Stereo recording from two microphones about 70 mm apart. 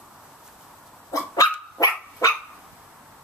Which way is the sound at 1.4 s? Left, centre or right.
Left.